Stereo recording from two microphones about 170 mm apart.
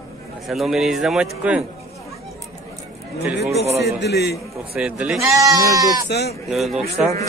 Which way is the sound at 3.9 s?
80° left.